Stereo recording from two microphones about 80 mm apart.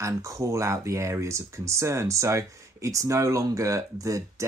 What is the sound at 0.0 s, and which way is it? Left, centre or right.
Speech, right.